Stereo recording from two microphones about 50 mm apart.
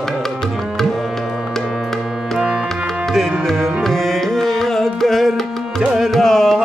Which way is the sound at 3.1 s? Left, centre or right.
Centre.